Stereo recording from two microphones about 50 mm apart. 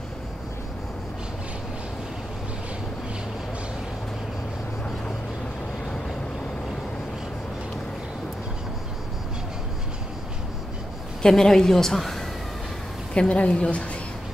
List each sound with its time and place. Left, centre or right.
11.2 s a woman's voice: centre
13.1 s a woman's voice: left